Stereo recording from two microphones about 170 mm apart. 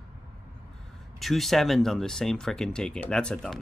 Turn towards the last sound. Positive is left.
turn(degrees=5)  # may be behind; listen again after turning